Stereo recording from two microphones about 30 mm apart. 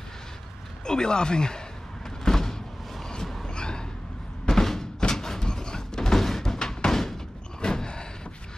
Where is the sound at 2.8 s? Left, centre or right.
Centre.